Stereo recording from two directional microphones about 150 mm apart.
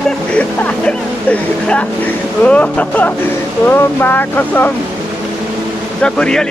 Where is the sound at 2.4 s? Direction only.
10° left (ahead or behind).